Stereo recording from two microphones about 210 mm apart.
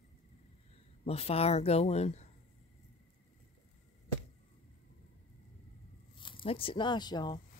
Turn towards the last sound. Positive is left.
turn(degrees=20)  # may be behind; listen again after turning